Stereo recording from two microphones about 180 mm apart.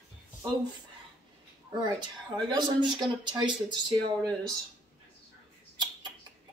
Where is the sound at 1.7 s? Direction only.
25° right (ahead or behind).